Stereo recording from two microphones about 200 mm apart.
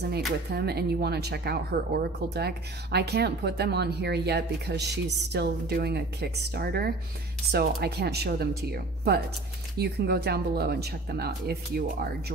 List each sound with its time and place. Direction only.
0.5 s speech: 55° right (ahead or behind)